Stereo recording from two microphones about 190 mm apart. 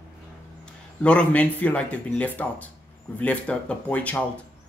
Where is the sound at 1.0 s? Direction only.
5° left (ahead or behind).